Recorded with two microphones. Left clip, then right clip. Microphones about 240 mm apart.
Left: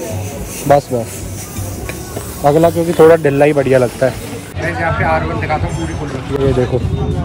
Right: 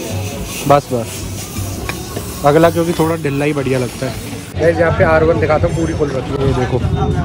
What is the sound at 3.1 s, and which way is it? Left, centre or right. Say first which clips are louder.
Speech: left 7 dB; centre.